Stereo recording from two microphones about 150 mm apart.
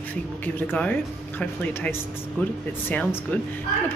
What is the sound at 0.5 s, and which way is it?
Speech, 10° left (ahead or behind).